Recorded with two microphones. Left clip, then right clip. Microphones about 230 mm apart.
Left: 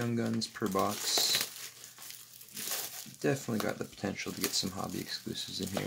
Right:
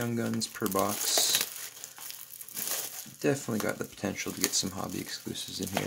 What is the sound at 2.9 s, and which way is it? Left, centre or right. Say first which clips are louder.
Speech: right 3 dB; centre.